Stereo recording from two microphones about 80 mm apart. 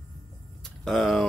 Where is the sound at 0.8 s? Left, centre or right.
Centre.